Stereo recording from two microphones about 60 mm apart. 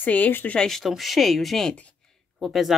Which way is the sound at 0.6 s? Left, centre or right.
Centre.